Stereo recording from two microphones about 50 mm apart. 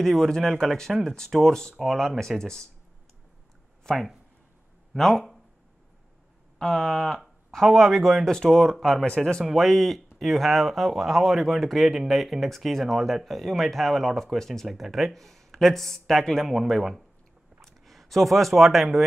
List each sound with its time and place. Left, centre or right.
0.0 s speech: centre
3.9 s speech: centre
6.6 s speech: centre
8.3 s speech: centre
9.4 s speech: centre